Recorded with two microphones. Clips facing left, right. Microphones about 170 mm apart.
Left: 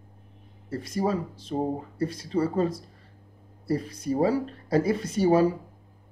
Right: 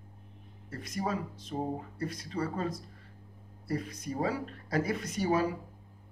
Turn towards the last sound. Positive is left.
turn(degrees=30)  # may be behind; listen again after turning